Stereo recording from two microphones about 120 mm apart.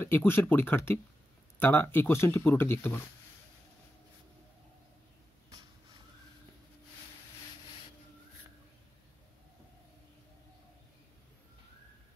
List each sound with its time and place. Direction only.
0.0 s speech: 20° left (ahead or behind)